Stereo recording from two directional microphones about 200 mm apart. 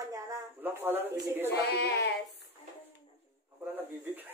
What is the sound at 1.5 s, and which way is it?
Speech, 55° left (ahead or behind).